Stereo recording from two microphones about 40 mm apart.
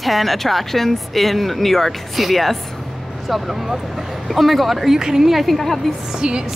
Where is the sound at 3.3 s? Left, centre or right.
Centre.